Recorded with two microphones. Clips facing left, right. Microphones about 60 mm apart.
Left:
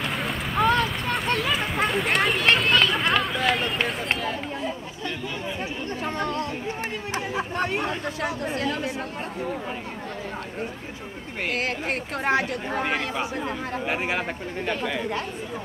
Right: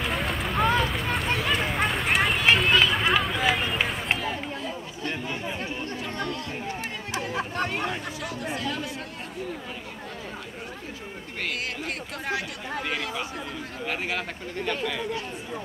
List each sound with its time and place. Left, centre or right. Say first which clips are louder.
0.0 s vehicle: even; centre
5.9 s chatter: left 4 dB; left
7.2 s a sound: left 1 dB; centre
11.5 s chatter: left 5 dB; left
12.8 s speech: left 4 dB; left